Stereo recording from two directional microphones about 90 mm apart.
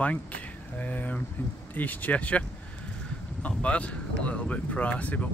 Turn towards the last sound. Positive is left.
turn(degrees=15)  # may be behind; listen again after turning